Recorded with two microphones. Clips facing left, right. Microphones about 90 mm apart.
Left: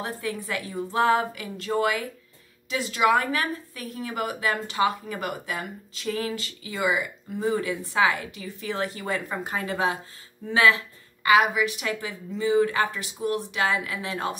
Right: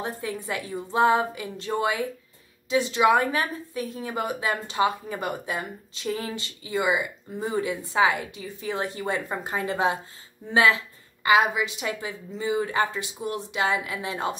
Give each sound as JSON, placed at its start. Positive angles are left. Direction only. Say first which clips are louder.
{"t": 0.0, "sound": "a woman's voice", "louder": "even", "side_deg": -20}